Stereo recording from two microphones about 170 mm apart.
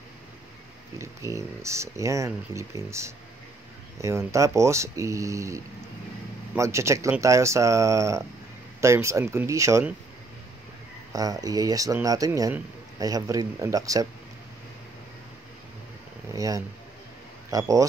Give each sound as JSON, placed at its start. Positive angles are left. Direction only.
{"t": 0.9, "sound": "speech", "side_deg": -15}
{"t": 11.1, "sound": "speech", "side_deg": -20}
{"t": 16.3, "sound": "speech", "side_deg": -20}